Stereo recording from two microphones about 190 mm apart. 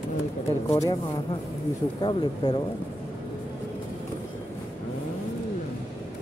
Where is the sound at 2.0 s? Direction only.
25° left (ahead or behind).